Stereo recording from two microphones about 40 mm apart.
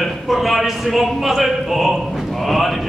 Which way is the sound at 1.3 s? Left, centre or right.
Centre.